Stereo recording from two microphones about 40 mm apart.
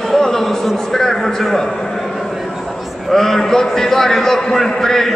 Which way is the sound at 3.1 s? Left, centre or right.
Centre.